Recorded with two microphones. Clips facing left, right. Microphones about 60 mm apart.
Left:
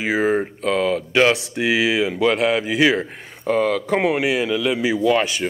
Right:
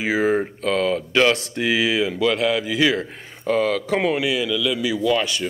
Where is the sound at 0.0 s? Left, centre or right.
Centre.